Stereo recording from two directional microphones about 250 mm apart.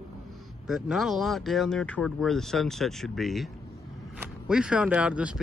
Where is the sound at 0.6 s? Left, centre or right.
Centre.